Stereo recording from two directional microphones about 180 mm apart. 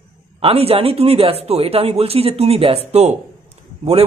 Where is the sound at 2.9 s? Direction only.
35° right (ahead or behind).